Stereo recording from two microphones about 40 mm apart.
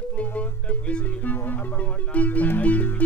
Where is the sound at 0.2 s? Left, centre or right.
Left.